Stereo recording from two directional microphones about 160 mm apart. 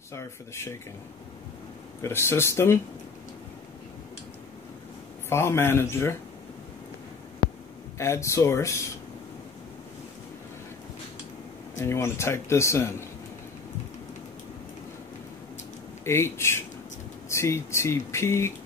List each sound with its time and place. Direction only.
0.1 s speech: 15° left (ahead or behind)
2.0 s speech: 15° left (ahead or behind)
5.3 s speech: 15° left (ahead or behind)
8.0 s speech: 15° left (ahead or behind)
11.8 s speech: 15° left (ahead or behind)
16.0 s speech: 15° left (ahead or behind)